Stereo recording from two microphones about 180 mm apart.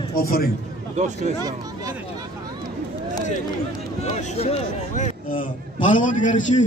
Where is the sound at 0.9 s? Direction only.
40° right (ahead or behind).